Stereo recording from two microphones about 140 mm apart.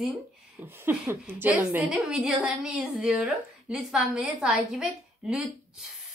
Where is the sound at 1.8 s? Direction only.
Centre (ahead or behind).